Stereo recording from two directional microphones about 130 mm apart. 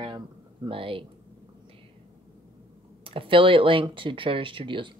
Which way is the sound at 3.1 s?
45° right (ahead or behind).